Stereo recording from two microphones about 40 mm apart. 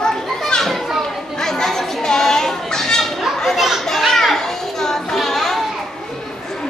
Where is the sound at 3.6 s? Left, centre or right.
Centre.